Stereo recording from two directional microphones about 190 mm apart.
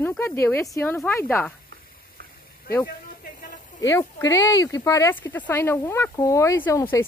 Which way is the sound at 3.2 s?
45° left (ahead or behind).